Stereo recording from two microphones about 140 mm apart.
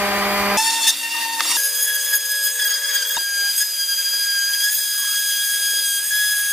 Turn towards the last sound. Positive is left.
turn(degrees=0)  # may be behind; listen again after turning